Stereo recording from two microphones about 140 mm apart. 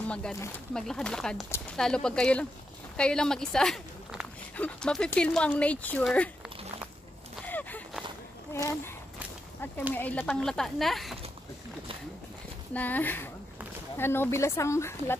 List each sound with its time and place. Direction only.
0.1 s a woman's voice: 5° left (ahead or behind)
7.4 s a sound: 10° left (ahead or behind)
9.9 s speech: 10° left (ahead or behind)
12.7 s speech: 10° left (ahead or behind)